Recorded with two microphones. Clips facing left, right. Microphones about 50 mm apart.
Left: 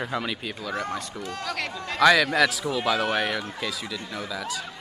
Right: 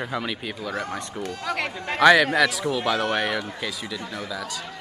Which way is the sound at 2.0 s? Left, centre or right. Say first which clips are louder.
Right 3 dB; centre.